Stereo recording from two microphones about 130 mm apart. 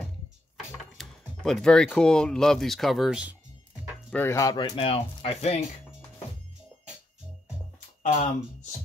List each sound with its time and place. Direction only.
0.9 s speech: centre (ahead or behind)
4.1 s speech: 20° left (ahead or behind)
4.6 s speech: 40° left (ahead or behind)
8.0 s speech: 80° left